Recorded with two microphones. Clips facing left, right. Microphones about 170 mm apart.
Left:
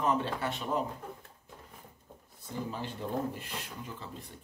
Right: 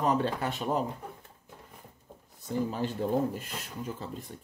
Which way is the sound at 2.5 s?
45° right (ahead or behind).